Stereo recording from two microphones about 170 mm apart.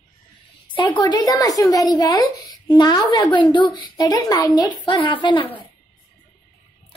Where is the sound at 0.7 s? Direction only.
25° left (ahead or behind).